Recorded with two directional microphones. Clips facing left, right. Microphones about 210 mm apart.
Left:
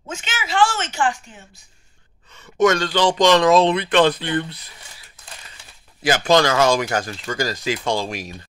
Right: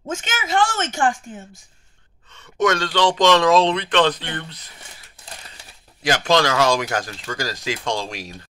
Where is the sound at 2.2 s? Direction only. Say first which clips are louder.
Left 3 dB; 5° left (ahead or behind).